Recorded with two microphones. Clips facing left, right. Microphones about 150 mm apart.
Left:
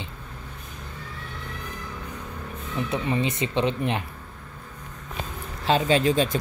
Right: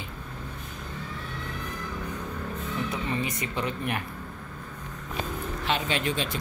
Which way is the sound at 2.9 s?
25° left (ahead or behind).